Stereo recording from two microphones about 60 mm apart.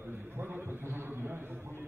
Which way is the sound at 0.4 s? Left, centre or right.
Right.